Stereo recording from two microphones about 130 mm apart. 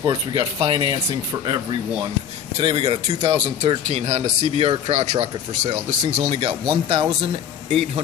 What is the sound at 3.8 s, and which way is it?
Speech, 60° right (ahead or behind).